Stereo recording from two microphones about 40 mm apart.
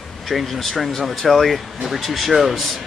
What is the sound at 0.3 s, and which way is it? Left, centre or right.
Speech, centre.